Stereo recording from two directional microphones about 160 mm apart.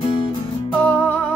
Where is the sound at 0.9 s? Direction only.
10° left (ahead or behind).